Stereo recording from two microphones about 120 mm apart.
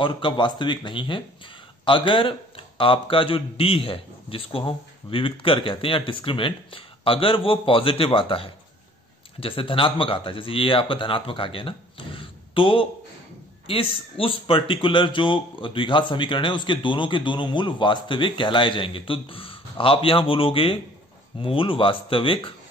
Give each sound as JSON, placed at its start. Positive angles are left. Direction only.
{"t": 0.0, "sound": "speech", "side_deg": 45}